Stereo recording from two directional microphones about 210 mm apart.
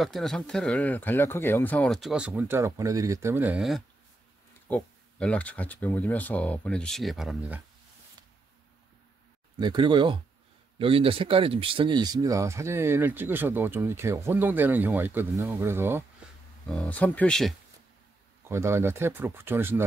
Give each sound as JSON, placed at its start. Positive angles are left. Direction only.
{"t": 0.0, "sound": "speech", "side_deg": 0}
{"t": 9.6, "sound": "speech", "side_deg": -20}
{"t": 16.6, "sound": "speech", "side_deg": 5}
{"t": 18.5, "sound": "speech", "side_deg": -10}